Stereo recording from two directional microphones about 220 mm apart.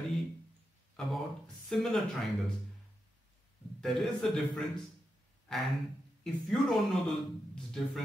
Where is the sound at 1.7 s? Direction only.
Centre (ahead or behind).